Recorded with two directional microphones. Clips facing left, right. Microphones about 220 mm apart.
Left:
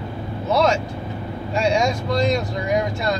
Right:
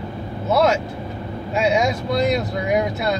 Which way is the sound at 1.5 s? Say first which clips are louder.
Right 1 dB; 5° right (ahead or behind).